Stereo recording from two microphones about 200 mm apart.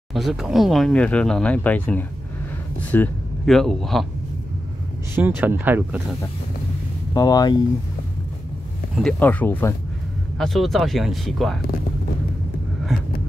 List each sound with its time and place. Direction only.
0.1 s speech: centre (ahead or behind)
5.1 s speech: 10° right (ahead or behind)
7.2 s speech: 20° left (ahead or behind)
8.9 s speech: 5° left (ahead or behind)